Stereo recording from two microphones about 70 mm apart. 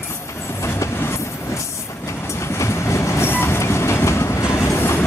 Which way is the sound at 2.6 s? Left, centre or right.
Left.